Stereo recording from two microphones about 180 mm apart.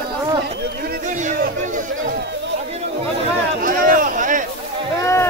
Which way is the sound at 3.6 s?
50° right (ahead or behind).